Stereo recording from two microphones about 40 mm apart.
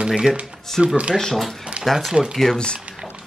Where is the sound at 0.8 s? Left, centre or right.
Right.